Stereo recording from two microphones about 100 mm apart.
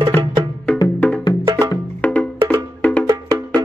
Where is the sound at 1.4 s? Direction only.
35° right (ahead or behind).